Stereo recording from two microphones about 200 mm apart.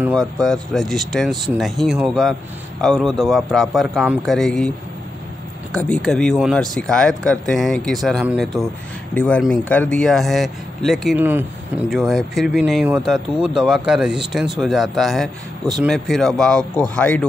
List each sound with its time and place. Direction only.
0.0 s speech: centre (ahead or behind)